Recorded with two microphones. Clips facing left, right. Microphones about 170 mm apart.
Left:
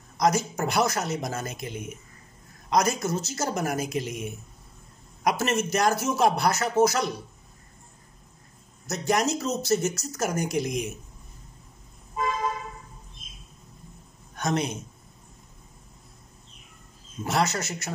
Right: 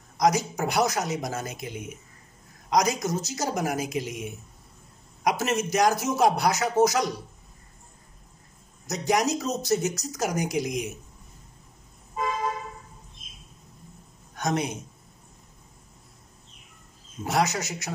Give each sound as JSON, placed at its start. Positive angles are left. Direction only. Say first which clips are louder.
{"t": 0.2, "sound": "speech", "louder": "right 1 dB", "side_deg": -15}
{"t": 8.8, "sound": "speech", "louder": "right 1 dB", "side_deg": -15}
{"t": 14.3, "sound": "a man's voice", "louder": "even", "side_deg": -15}
{"t": 17.2, "sound": "speech", "louder": "even", "side_deg": -15}